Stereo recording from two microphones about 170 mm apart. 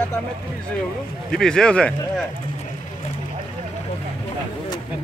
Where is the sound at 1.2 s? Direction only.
5° left (ahead or behind).